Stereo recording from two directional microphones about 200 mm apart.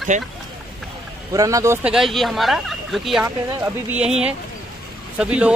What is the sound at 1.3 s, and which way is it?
Speech, 15° right (ahead or behind).